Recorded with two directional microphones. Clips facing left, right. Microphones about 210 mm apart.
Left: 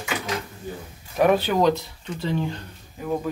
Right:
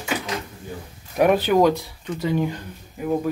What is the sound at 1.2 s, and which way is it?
Speech, 10° right (ahead or behind).